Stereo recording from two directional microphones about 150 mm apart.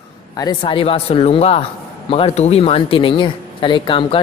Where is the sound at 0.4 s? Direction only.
30° left (ahead or behind).